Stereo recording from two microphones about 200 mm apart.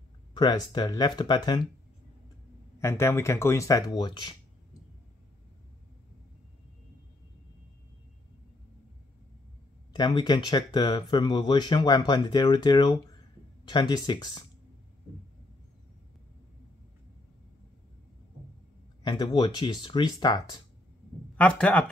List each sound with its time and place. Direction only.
0.3 s speech: 20° left (ahead or behind)
2.8 s speech: 15° left (ahead or behind)
9.9 s speech: 20° left (ahead or behind)
19.0 s speech: 20° left (ahead or behind)
21.4 s speech: 5° left (ahead or behind)